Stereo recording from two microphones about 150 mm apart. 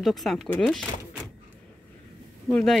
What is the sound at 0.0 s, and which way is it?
Speech, centre (ahead or behind).